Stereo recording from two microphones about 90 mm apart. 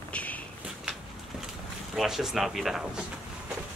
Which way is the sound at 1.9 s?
5° right (ahead or behind).